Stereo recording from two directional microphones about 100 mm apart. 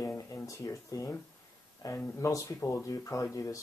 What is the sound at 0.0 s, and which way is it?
Speech, 30° left (ahead or behind).